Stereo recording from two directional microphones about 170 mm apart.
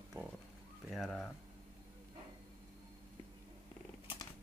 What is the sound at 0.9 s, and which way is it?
Speech, centre (ahead or behind).